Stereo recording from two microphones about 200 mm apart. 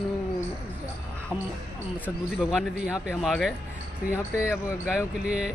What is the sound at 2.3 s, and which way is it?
Speech, 5° right (ahead or behind).